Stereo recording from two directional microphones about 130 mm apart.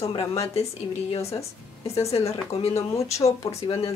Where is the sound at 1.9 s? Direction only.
50° left (ahead or behind).